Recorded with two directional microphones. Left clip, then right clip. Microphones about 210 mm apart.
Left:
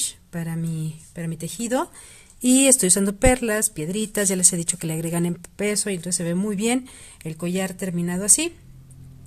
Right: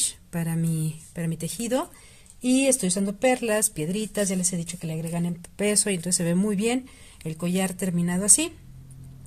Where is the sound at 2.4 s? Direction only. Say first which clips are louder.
Left 4 dB; 25° left (ahead or behind).